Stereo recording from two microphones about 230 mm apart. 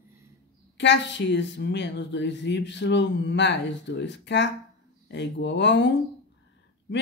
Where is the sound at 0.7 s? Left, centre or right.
Left.